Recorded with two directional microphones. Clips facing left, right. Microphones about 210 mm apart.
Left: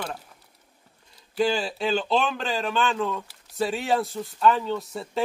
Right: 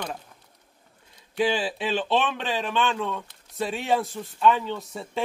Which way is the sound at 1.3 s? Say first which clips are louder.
Even; 5° right (ahead or behind).